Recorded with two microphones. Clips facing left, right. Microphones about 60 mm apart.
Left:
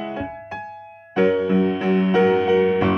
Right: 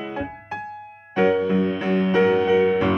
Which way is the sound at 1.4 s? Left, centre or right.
Centre.